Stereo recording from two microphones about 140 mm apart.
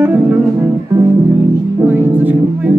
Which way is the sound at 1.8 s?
15° right (ahead or behind).